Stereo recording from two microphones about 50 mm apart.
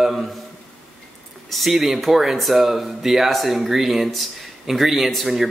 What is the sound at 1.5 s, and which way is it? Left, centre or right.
Speech, centre.